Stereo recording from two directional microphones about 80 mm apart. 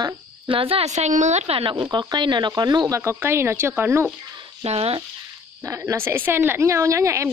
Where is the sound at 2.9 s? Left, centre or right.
Right.